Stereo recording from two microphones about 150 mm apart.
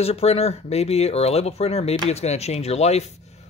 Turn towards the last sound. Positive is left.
turn(degrees=45)  # may be behind; listen again after turning